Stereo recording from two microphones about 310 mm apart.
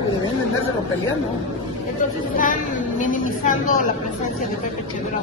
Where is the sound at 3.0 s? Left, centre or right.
Left.